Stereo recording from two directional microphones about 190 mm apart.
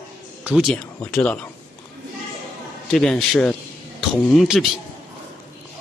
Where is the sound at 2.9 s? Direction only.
Centre (ahead or behind).